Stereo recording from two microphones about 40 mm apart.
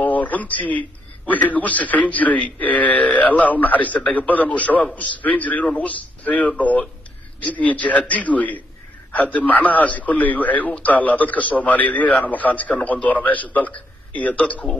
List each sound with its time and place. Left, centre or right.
0.0 s a man's voice: left